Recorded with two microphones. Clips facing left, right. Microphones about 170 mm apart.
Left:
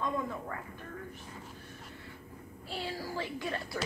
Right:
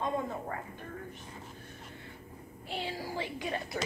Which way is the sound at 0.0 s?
45° right (ahead or behind).